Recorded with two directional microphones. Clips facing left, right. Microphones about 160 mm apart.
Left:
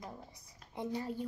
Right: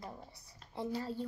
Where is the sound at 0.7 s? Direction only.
20° left (ahead or behind).